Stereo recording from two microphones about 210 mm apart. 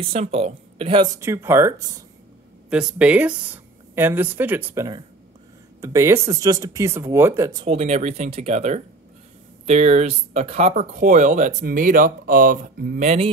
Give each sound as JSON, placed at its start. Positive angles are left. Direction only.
{"t": 0.0, "sound": "speech", "side_deg": -30}
{"t": 7.6, "sound": "speech", "side_deg": -30}